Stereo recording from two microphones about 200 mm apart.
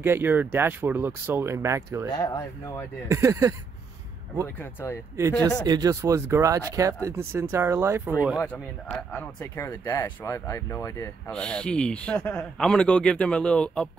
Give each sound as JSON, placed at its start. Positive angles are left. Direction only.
{"t": 0.0, "sound": "speech", "side_deg": -10}
{"t": 2.1, "sound": "speech", "side_deg": 15}
{"t": 3.1, "sound": "speech", "side_deg": -15}
{"t": 4.6, "sound": "speech", "side_deg": 10}
{"t": 5.7, "sound": "speech", "side_deg": -20}
{"t": 8.4, "sound": "speech", "side_deg": 10}
{"t": 11.3, "sound": "speech", "side_deg": 5}